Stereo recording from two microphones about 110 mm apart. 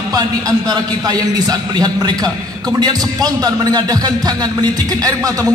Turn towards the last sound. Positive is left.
turn(degrees=-35)  # may be behind; listen again after turning